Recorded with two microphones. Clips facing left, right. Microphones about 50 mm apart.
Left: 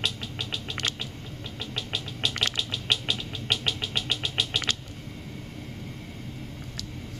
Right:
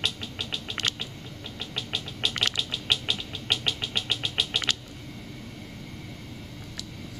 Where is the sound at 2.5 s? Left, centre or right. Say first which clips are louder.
Even; centre.